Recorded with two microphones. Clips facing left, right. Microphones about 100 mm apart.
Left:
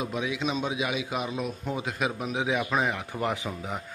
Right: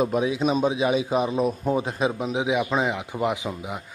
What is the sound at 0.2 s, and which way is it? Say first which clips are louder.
A man's voice: right 7 dB; 35° right (ahead or behind).